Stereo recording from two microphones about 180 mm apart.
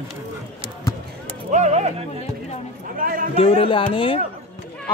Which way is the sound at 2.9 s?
50° right (ahead or behind).